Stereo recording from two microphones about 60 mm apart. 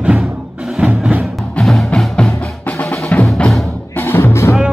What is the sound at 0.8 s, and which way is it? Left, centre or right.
Music, right.